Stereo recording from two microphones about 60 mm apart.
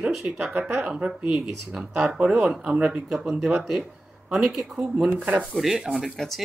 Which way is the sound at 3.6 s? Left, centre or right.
Centre.